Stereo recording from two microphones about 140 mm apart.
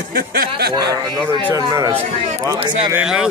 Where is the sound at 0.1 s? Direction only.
90° right.